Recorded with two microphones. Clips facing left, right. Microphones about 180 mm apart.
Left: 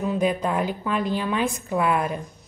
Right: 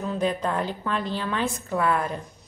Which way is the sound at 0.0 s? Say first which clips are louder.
Left 3 dB; 10° left (ahead or behind).